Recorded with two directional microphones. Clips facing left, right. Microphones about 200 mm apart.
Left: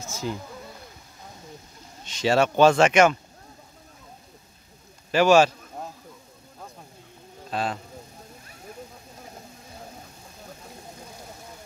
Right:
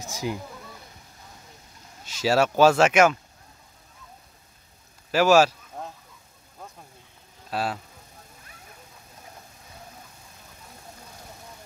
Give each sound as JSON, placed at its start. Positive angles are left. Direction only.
{"t": 0.0, "sound": "speech", "side_deg": -15}
{"t": 2.0, "sound": "speech", "side_deg": -5}
{"t": 5.1, "sound": "speech", "side_deg": -5}
{"t": 7.5, "sound": "speech", "side_deg": -5}